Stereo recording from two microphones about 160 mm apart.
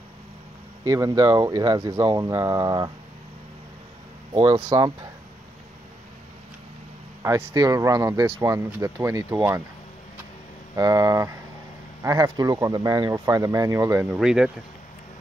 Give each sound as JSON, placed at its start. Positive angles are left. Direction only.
{"t": 0.8, "sound": "speech", "side_deg": -20}
{"t": 4.3, "sound": "speech", "side_deg": -25}
{"t": 7.2, "sound": "speech", "side_deg": -20}
{"t": 10.8, "sound": "speech", "side_deg": -20}
{"t": 14.1, "sound": "speech", "side_deg": -5}